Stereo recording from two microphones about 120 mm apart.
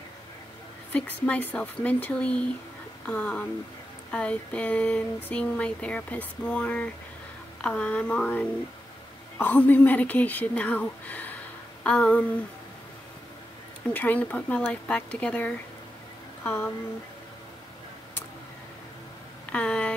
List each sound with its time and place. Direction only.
0.9 s speech: 10° left (ahead or behind)
13.9 s speech: 15° left (ahead or behind)
19.5 s speech: 10° left (ahead or behind)